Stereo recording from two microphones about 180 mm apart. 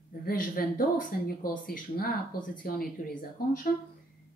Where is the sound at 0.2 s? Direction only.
55° left (ahead or behind).